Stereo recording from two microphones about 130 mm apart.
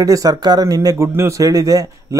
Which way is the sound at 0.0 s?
25° right (ahead or behind).